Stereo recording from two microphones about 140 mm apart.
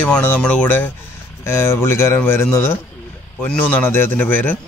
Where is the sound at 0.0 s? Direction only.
15° left (ahead or behind).